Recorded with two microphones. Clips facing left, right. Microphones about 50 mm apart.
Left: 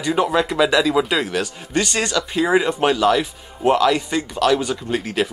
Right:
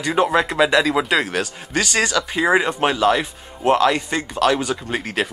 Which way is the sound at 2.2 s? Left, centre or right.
Centre.